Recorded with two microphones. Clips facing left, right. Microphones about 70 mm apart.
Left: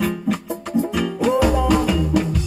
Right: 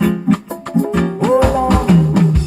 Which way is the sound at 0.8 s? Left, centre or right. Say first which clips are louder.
Right 6 dB; right.